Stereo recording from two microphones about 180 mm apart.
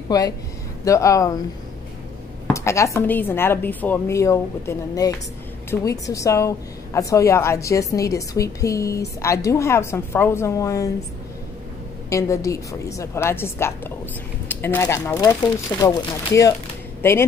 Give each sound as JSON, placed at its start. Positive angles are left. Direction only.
{"t": 0.1, "sound": "a woman's voice", "side_deg": 20}
{"t": 2.4, "sound": "a woman's voice", "side_deg": 15}
{"t": 12.1, "sound": "a woman's voice", "side_deg": 15}